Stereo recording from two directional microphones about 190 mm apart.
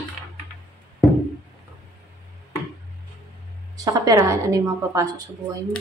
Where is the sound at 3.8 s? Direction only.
20° right (ahead or behind).